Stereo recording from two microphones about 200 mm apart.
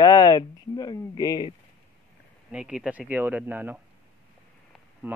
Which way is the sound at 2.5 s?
5° right (ahead or behind).